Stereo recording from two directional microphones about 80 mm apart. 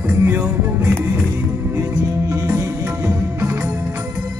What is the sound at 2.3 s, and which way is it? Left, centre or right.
Music, right.